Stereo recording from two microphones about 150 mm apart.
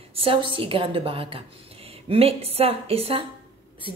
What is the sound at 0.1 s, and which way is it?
A woman's voice, 40° right (ahead or behind).